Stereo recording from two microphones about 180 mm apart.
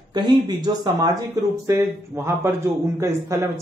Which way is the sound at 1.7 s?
15° right (ahead or behind).